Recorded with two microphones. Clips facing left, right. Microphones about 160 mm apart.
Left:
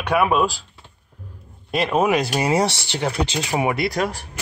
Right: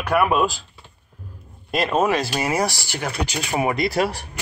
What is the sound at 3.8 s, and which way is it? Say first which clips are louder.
Speech: right 1 dB; 10° right (ahead or behind).